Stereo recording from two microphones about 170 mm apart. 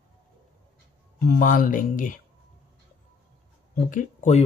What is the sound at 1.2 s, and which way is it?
Speech, 55° left (ahead or behind).